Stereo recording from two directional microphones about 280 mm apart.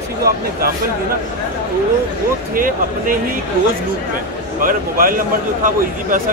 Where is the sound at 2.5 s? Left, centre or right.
Right.